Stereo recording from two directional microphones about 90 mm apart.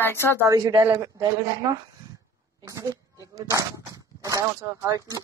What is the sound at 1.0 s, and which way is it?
Speech, 45° right (ahead or behind).